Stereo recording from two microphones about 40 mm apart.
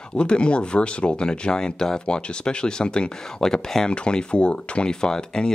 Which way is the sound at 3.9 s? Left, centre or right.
Left.